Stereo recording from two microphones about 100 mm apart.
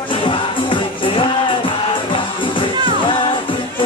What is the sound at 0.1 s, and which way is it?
Music, 55° left (ahead or behind).